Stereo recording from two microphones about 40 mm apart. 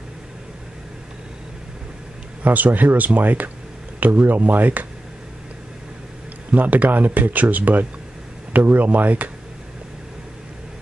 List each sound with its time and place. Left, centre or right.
2.4 s speech: right
6.5 s speech: right